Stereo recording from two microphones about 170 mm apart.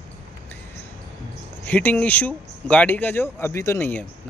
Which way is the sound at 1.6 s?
10° left (ahead or behind).